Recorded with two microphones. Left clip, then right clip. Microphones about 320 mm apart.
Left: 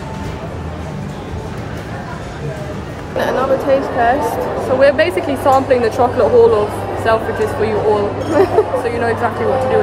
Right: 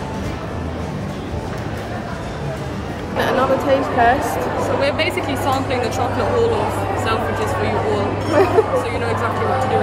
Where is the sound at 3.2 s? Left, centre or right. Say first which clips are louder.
Left 2 dB; centre.